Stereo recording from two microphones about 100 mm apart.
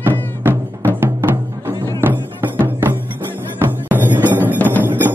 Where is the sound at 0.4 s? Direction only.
25° right (ahead or behind).